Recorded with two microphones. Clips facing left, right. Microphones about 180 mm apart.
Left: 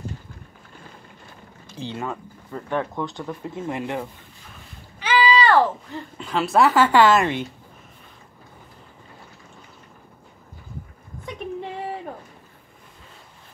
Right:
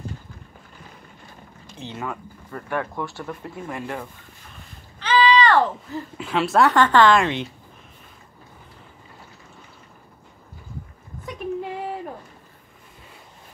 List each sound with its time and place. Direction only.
1.8 s speech: 30° left (ahead or behind)
2.5 s speech: 15° left (ahead or behind)